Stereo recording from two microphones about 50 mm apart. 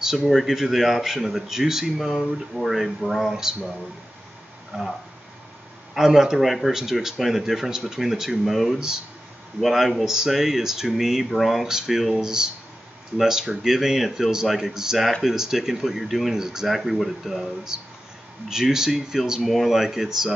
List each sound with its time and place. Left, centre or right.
0.0 s speech: centre
4.7 s speech: centre
5.9 s speech: centre
9.6 s speech: centre